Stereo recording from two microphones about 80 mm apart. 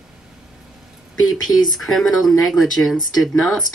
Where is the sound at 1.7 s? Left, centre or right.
Centre.